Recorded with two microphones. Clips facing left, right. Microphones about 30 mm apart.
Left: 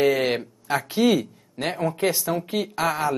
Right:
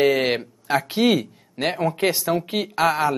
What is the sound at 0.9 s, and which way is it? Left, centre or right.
Speech, right.